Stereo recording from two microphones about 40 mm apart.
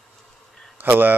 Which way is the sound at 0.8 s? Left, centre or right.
Right.